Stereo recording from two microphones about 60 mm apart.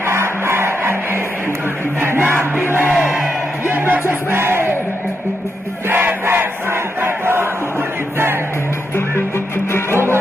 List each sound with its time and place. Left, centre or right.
0.0 s music: right
2.0 s battle cry: right
2.6 s music: right
5.9 s crowd: right
9.7 s music: left